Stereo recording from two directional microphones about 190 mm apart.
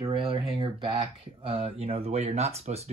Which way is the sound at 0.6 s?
25° right (ahead or behind).